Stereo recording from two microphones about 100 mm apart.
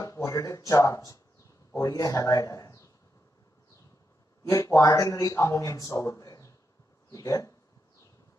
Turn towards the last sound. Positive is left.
turn(degrees=30)  # may be behind; listen again after turning